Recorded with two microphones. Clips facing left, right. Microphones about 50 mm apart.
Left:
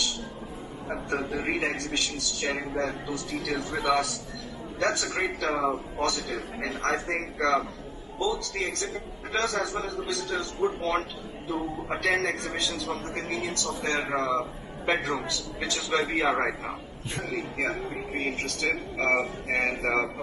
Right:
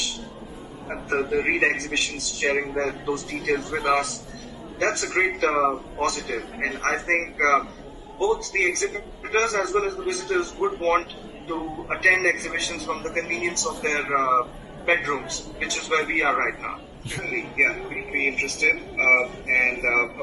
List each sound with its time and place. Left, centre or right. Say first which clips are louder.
1.4 s a man's voice: right 6 dB; right
6.9 s a man's voice: right 5 dB; right